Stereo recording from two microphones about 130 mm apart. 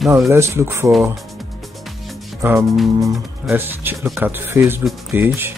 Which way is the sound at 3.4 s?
15° right (ahead or behind).